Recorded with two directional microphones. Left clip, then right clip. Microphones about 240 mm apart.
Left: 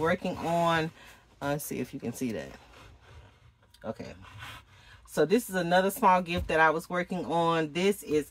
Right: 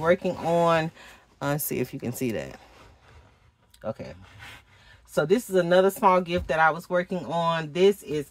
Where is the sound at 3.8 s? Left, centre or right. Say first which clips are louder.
Right 5 dB; right.